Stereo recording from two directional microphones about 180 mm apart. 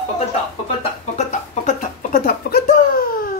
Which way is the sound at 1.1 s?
40° left (ahead or behind).